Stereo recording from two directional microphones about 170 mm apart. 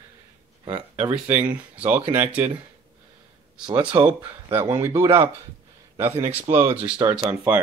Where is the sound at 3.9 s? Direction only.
15° right (ahead or behind).